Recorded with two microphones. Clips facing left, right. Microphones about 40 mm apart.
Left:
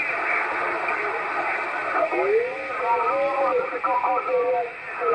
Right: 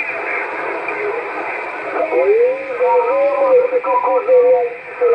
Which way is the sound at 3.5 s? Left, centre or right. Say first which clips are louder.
Right 10 dB; centre.